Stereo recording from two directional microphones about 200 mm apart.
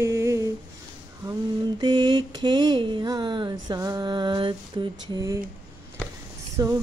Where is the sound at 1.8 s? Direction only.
20° right (ahead or behind).